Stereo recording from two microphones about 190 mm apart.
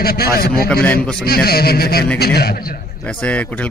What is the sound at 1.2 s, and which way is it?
A man's voice, 55° left (ahead or behind).